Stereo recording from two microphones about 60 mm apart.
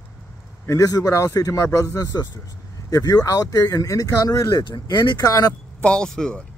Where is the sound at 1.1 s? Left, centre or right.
Left.